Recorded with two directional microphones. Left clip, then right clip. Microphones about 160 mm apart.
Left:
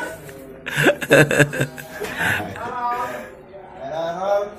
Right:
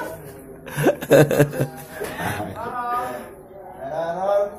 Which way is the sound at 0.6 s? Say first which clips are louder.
Left 2 dB; 10° right (ahead or behind).